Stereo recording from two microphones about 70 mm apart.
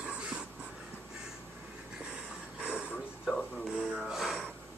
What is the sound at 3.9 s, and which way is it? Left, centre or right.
Wheeze, centre.